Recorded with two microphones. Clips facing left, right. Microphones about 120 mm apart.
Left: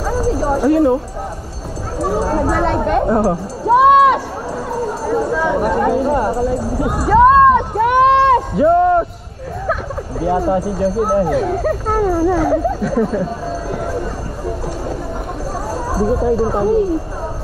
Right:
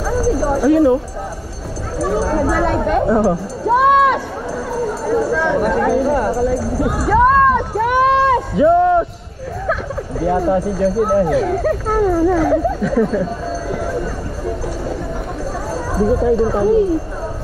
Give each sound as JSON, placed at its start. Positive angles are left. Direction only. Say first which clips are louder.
{"t": 0.4, "sound": "a sound", "louder": "even", "side_deg": 10}
{"t": 0.7, "sound": "speech", "louder": "right 1 dB", "side_deg": 0}
{"t": 2.0, "sound": "speech", "louder": "even", "side_deg": 5}
{"t": 2.8, "sound": "a sound", "louder": "even", "side_deg": 5}
{"t": 5.3, "sound": "speech", "louder": "even", "side_deg": 5}
{"t": 6.0, "sound": "speech", "louder": "even", "side_deg": 20}
{"t": 6.7, "sound": "speech", "louder": "left 1 dB", "side_deg": 0}
{"t": 7.9, "sound": "run", "louder": "left 3 dB", "side_deg": 0}
{"t": 9.7, "sound": "speech", "louder": "even", "side_deg": 5}
{"t": 15.9, "sound": "speech", "louder": "right 1 dB", "side_deg": 5}